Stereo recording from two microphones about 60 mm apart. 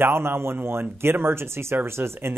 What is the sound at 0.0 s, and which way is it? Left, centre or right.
Speech, right.